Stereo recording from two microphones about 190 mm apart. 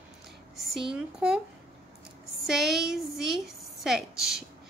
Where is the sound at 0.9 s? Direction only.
5° right (ahead or behind).